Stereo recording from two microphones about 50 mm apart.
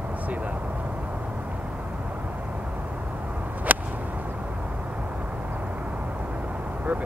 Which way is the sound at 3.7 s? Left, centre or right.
Right.